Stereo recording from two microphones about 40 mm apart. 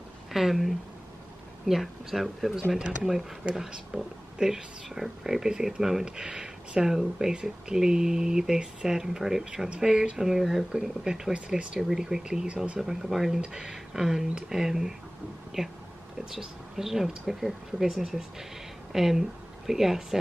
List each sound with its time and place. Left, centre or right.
0.3 s speech: centre
2.8 s speech: centre
11.3 s speech: right
11.9 s a woman's voice: centre